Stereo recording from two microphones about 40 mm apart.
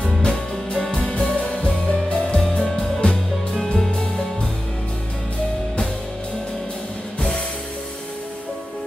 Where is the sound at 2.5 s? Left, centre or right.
Centre.